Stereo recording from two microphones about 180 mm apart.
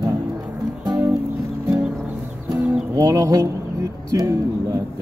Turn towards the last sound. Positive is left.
turn(degrees=-20)  # may be behind; listen again after turning